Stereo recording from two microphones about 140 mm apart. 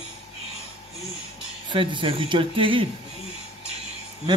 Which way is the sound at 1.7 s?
35° right (ahead or behind).